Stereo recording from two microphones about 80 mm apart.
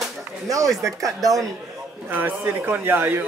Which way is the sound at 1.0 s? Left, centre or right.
Right.